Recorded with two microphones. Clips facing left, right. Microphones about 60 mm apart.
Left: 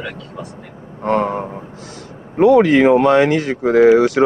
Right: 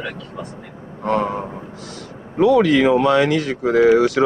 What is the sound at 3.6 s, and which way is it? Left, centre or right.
Speech, left.